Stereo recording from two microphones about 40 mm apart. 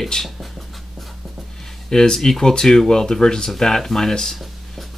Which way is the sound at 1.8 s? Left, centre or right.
Centre.